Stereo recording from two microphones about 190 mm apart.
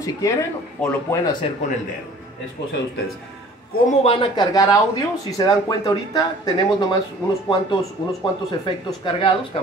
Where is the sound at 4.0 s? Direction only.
30° left (ahead or behind).